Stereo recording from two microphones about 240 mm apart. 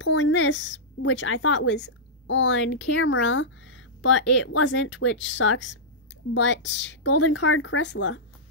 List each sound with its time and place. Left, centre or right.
0.0 s speech: left